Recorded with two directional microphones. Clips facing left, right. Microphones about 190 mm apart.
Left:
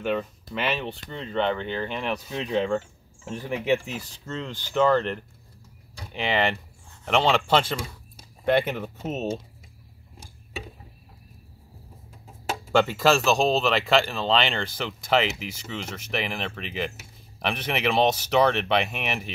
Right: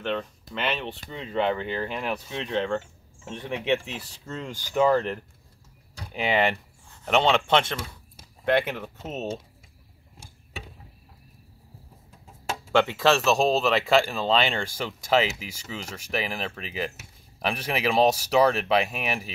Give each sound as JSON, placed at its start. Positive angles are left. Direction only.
{"t": 0.0, "sound": "speech", "side_deg": 5}
{"t": 12.9, "sound": "speech", "side_deg": 0}